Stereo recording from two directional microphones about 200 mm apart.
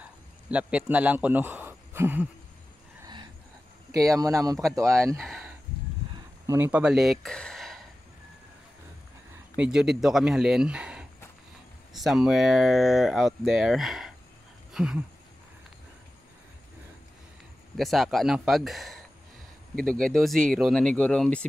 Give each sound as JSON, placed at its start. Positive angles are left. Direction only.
{"t": 0.0, "sound": "a sound", "side_deg": -5}
{"t": 3.9, "sound": "speech", "side_deg": -15}
{"t": 5.1, "sound": "speech", "side_deg": 0}
{"t": 6.4, "sound": "speech", "side_deg": -15}
{"t": 9.6, "sound": "speech", "side_deg": -5}
{"t": 14.7, "sound": "a sound", "side_deg": 0}
{"t": 17.7, "sound": "speech", "side_deg": 0}